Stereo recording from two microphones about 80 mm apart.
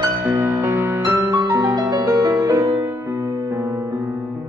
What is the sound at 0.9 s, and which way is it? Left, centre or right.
Music, right.